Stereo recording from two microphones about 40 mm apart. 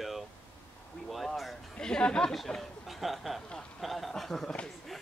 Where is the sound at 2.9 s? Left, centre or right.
Centre.